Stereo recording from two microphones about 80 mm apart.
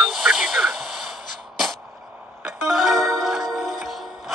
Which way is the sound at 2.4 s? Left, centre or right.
Centre.